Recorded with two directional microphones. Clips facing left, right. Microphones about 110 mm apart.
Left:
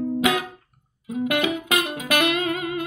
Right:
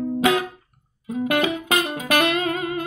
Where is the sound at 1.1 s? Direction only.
35° right (ahead or behind).